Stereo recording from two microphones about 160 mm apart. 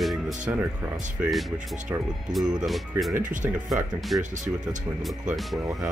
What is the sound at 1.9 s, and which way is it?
Speech, 15° right (ahead or behind).